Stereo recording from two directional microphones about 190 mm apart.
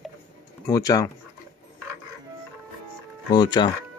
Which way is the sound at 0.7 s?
20° left (ahead or behind).